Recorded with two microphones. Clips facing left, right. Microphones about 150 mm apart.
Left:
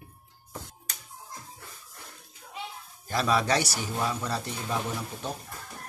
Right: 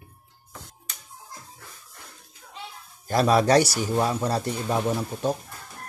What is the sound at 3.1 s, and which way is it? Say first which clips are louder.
Speech: right 7 dB; 45° right (ahead or behind).